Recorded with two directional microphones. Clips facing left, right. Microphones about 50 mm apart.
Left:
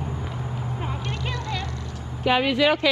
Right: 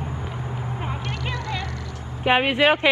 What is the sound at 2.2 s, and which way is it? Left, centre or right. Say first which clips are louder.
Speech: right 2 dB; right.